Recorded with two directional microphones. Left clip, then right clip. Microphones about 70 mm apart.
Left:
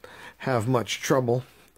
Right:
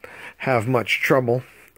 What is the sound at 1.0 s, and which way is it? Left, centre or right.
Speech, centre.